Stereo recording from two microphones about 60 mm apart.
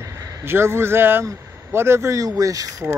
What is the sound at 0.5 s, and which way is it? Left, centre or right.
Speech, right.